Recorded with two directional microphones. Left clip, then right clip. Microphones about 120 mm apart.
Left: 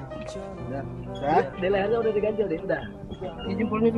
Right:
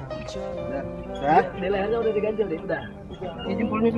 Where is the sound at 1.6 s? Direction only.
80° left.